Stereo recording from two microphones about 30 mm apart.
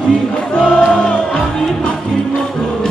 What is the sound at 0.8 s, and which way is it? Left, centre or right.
Music, left.